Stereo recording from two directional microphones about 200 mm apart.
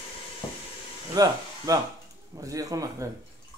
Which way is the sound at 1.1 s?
20° right (ahead or behind).